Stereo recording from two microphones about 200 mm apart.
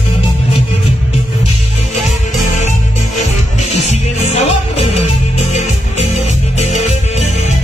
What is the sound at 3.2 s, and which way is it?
Music, 35° left (ahead or behind).